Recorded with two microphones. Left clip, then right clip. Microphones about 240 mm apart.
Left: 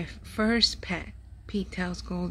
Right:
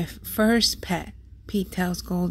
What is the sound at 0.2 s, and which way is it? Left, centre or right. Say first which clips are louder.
A woman's voice: right 3 dB; centre.